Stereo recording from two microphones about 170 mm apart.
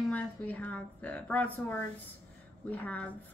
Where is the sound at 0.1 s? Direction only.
10° left (ahead or behind).